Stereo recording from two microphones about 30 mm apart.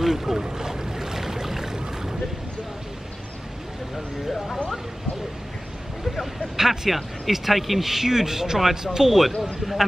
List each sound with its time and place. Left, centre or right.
0.0 s boat: centre
6.5 s a sound: centre
6.9 s speech: centre
7.8 s a man's voice: centre